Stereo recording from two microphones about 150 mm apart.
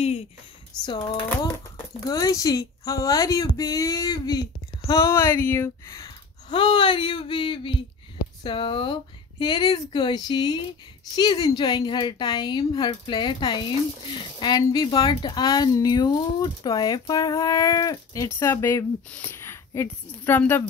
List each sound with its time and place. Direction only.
0.8 s speech: 30° left (ahead or behind); by 20.6 s 15° left (ahead or behind)